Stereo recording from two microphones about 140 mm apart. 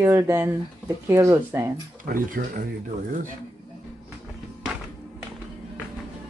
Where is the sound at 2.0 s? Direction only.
90° right.